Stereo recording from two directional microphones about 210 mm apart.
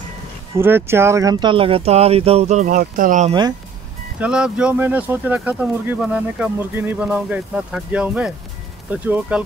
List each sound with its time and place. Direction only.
0.6 s speech: 10° right (ahead or behind); by 3.3 s 35° right (ahead or behind)
4.2 s speech: 5° right (ahead or behind)